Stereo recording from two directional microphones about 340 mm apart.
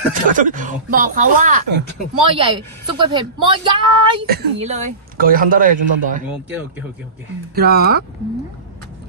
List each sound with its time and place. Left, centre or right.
0.3 s speech: right
7.5 s speech: right